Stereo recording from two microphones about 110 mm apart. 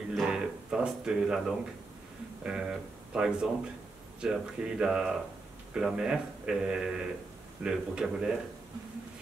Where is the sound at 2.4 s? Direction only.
10° right (ahead or behind).